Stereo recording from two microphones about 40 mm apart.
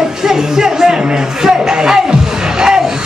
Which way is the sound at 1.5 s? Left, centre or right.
Centre.